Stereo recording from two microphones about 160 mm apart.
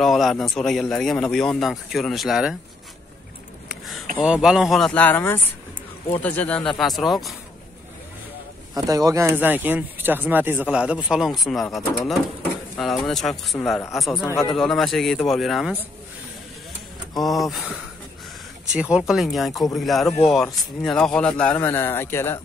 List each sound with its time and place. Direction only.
0.0 s speech: centre (ahead or behind)
3.6 s a sound: centre (ahead or behind)
4.2 s speech: 5° right (ahead or behind)
8.7 s speech: 20° right (ahead or behind); by 13.6 s centre (ahead or behind)
13.7 s speech: 20° left (ahead or behind)
14.5 s speech: centre (ahead or behind)
17.2 s a man's voice: centre (ahead or behind)